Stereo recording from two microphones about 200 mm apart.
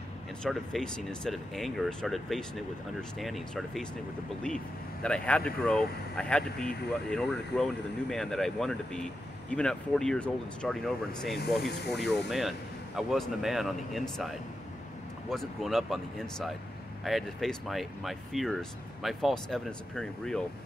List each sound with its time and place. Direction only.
0.4 s speech: 5° left (ahead or behind)
5.0 s speech: 5° left (ahead or behind)
11.6 s speech: 55° left (ahead or behind)
11.9 s speech: centre (ahead or behind)